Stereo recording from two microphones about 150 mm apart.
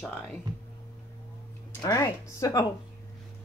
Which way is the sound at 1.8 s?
20° left (ahead or behind).